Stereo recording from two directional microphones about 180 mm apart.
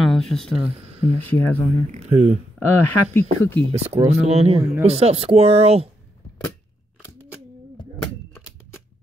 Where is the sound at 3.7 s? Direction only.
35° right (ahead or behind).